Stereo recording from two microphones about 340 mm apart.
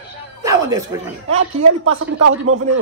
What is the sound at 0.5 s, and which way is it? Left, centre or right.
Speech, centre.